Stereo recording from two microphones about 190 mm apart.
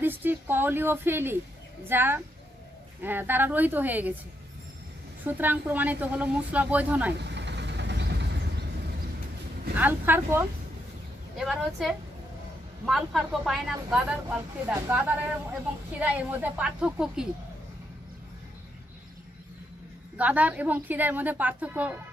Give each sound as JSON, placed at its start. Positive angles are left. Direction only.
{"t": 0.0, "sound": "speech", "side_deg": -10}
{"t": 5.2, "sound": "speech", "side_deg": -10}
{"t": 7.2, "sound": "vehicle", "side_deg": -65}
{"t": 9.8, "sound": "speech", "side_deg": -10}
{"t": 20.2, "sound": "speech", "side_deg": -10}